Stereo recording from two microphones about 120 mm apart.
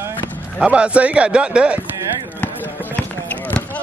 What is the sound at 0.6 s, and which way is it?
A man's voice, 10° right (ahead or behind).